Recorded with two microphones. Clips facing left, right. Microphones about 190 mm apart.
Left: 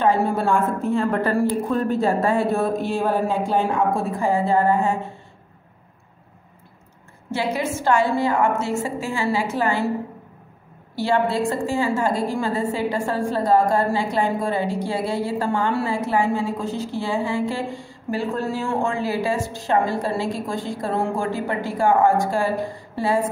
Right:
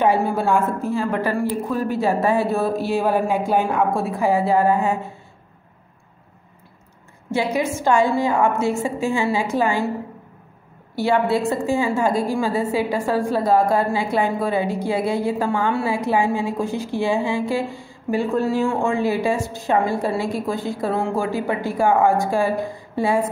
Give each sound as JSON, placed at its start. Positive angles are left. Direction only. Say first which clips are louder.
{"t": 0.2, "sound": "speech", "louder": "right 1 dB", "side_deg": -5}
{"t": 7.2, "sound": "speech", "louder": "right 3 dB", "side_deg": -15}
{"t": 11.0, "sound": "speech", "louder": "right 2 dB", "side_deg": -10}